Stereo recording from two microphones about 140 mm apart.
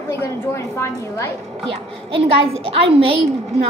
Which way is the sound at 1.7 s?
45° right (ahead or behind).